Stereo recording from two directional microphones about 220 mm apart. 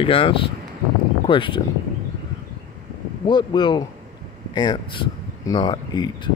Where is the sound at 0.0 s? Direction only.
25° left (ahead or behind).